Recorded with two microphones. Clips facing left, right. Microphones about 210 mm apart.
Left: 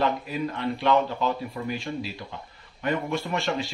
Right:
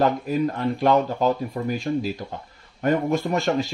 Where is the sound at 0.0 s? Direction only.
45° right (ahead or behind).